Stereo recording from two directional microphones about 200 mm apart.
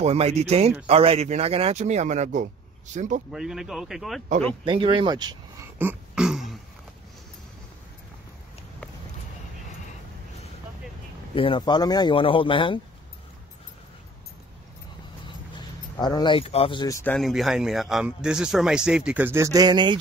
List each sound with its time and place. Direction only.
0.0 s a man's voice: 30° right (ahead or behind)
3.3 s speech: centre (ahead or behind)
4.6 s speech: 25° right (ahead or behind)
5.8 s throat clearing: 5° right (ahead or behind)
11.3 s speech: 25° left (ahead or behind)
16.0 s speech: 20° left (ahead or behind)
17.1 s speech: centre (ahead or behind); by 20.0 s 20° right (ahead or behind)